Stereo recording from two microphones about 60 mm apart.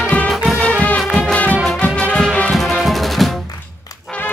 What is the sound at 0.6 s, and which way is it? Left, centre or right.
Music, left.